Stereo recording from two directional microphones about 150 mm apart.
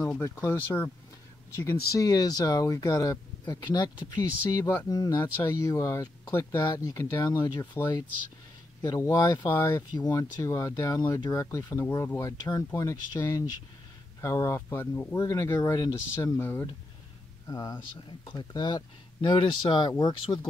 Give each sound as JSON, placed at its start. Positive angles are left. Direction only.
{"t": 0.2, "sound": "speech", "side_deg": 15}
{"t": 16.3, "sound": "speech", "side_deg": 15}